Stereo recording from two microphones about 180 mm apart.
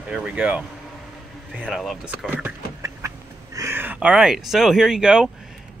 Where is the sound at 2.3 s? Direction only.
15° right (ahead or behind).